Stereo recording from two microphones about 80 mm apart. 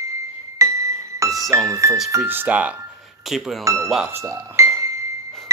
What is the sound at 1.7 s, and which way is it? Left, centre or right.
Speech, right.